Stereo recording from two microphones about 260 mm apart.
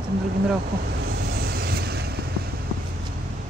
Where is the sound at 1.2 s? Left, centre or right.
Right.